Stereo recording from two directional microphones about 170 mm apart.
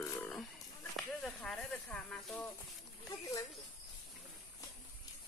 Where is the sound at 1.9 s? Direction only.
5° left (ahead or behind).